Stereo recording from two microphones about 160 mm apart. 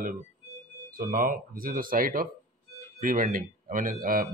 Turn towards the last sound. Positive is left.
turn(degrees=-60)  # may be behind; listen again after turning